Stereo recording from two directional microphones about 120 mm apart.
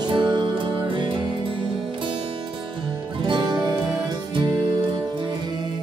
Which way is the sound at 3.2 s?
40° right (ahead or behind).